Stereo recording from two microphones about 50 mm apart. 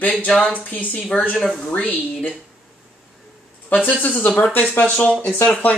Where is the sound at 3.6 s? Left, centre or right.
Left.